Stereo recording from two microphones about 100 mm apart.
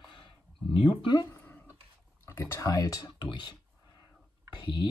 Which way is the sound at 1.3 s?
20° left (ahead or behind).